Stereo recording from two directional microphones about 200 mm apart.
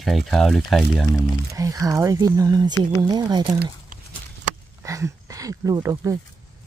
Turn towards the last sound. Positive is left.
turn(degrees=-15)  # may be behind; listen again after turning